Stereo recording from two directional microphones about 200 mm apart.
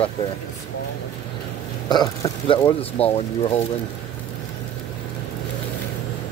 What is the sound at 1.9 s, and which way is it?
Speech, 25° left (ahead or behind).